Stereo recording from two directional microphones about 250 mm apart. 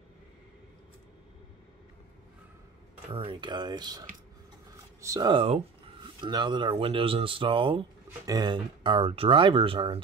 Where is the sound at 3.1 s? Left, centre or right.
Centre.